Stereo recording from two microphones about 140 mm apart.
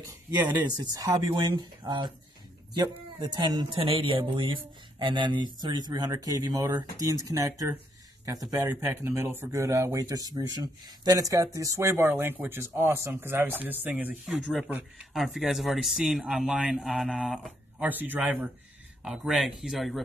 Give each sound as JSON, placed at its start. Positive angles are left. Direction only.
{"t": 0.7, "sound": "speech", "side_deg": -25}
{"t": 15.1, "sound": "speech", "side_deg": 0}
{"t": 17.8, "sound": "speech", "side_deg": -15}